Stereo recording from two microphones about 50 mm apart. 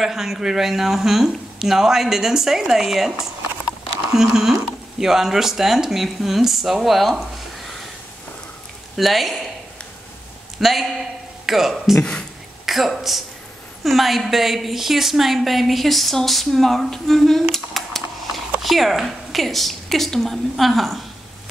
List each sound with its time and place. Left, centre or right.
0.0 s speech: centre
8.9 s a woman's voice: centre
10.6 s a woman's voice: centre
12.0 s a sound: left
12.6 s a woman's voice: centre